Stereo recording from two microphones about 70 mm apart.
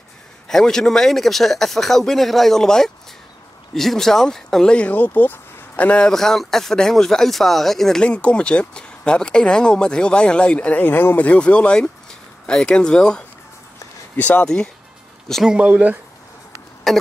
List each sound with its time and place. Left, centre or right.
0.5 s speech: centre; by 11.1 s left
11.1 s speech: centre
14.1 s speech: left
14.4 s speech: centre
15.4 s speech: centre
16.9 s speech: centre